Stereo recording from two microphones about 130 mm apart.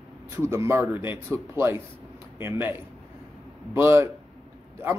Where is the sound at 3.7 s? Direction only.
20° right (ahead or behind).